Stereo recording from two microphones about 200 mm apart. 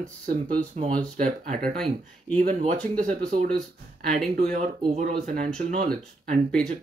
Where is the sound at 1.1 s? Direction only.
40° right (ahead or behind).